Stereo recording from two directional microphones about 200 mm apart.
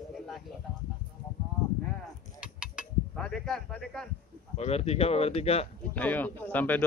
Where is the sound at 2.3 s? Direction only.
5° right (ahead or behind).